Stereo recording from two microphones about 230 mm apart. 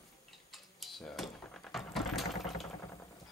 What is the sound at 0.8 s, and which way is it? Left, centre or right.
Vehicle, centre.